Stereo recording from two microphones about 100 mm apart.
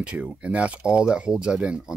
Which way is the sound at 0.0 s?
10° right (ahead or behind).